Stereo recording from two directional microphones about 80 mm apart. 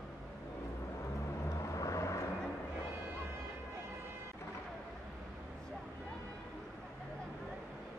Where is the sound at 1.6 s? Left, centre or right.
Left.